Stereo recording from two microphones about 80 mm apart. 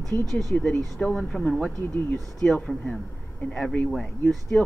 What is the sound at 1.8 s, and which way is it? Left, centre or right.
Speech, left.